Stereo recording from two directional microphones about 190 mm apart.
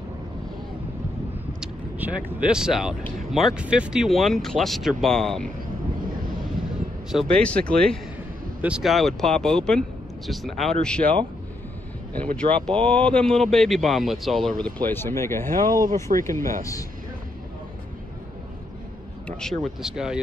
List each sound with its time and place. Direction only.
1.6 s speech: 5° right (ahead or behind)
7.1 s speech: centre (ahead or behind)
8.5 s speech: 5° right (ahead or behind)
12.4 s speech: 30° right (ahead or behind)
12.8 s speech: 5° left (ahead or behind)
15.5 s speech: 45° right (ahead or behind)
19.2 s speech: centre (ahead or behind)